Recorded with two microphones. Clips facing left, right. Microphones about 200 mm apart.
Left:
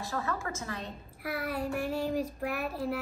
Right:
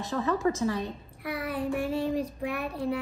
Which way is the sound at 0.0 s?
20° right (ahead or behind).